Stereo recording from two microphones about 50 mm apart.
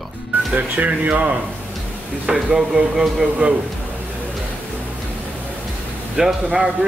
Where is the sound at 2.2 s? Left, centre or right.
Centre.